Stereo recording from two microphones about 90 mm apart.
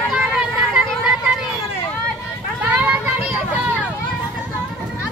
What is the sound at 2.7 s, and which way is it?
Vehicle, 15° right (ahead or behind).